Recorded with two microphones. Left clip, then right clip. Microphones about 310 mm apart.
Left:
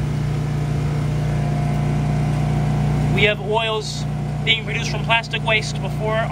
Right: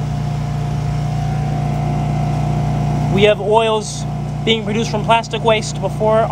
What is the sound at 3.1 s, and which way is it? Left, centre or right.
Speech, centre.